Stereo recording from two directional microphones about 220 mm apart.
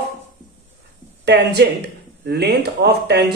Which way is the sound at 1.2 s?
50° right (ahead or behind).